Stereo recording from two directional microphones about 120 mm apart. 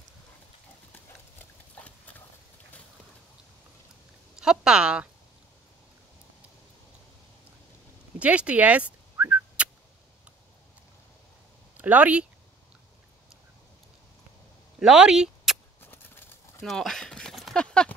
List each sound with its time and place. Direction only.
1.9 s clip-clop: 10° left (ahead or behind)
4.4 s speech: 5° right (ahead or behind)
8.2 s a sound: 10° right (ahead or behind)
11.7 s speech: 10° right (ahead or behind)
14.8 s speech: 5° right (ahead or behind)
15.8 s bird: 20° left (ahead or behind)
16.6 s clip-clop: 5° left (ahead or behind)